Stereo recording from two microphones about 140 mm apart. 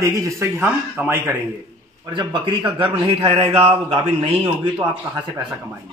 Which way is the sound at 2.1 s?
35° right (ahead or behind).